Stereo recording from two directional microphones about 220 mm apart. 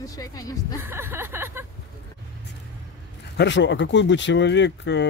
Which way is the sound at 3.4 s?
55° left (ahead or behind).